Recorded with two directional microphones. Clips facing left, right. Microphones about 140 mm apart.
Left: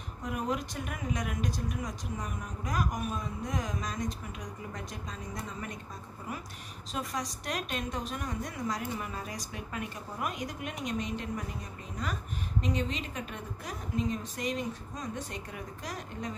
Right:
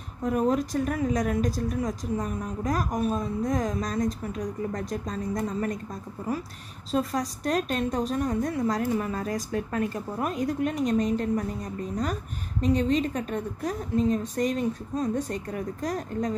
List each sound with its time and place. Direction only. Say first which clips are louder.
0.2 s speech: right 9 dB; 35° right (ahead or behind)
6.9 s speech: right 9 dB; 35° right (ahead or behind)
12.6 s speech: right 12 dB; 35° right (ahead or behind)